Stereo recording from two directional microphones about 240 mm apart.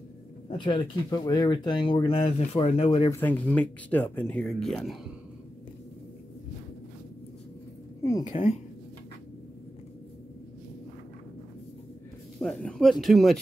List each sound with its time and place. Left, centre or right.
0.6 s speech: centre
3.1 s speech: centre
8.3 s speech: left
12.4 s speech: centre